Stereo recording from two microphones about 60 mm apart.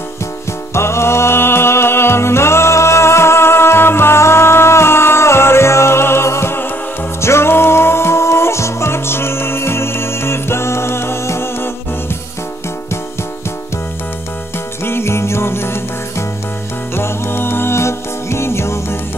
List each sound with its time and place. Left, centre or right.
0.7 s music: left
14.9 s music: left